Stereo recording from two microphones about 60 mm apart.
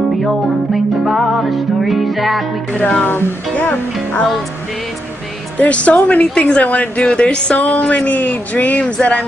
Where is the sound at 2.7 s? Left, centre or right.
Left.